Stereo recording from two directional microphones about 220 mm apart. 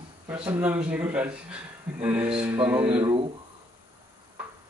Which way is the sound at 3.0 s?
25° right (ahead or behind).